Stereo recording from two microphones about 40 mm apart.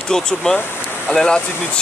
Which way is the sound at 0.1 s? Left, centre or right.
Centre.